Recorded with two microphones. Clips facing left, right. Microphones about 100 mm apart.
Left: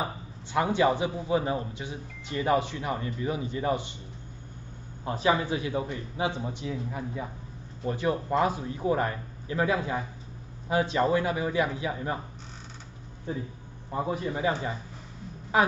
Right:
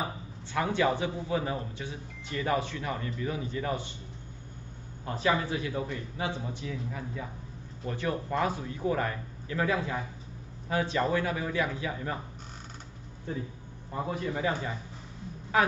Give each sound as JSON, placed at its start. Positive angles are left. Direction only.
{"t": 0.0, "sound": "a man's voice", "side_deg": 20}
{"t": 5.0, "sound": "a man's voice", "side_deg": 20}
{"t": 13.9, "sound": "a man's voice", "side_deg": 15}